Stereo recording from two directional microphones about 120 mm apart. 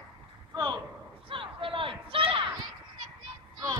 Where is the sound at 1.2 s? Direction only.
45° right (ahead or behind).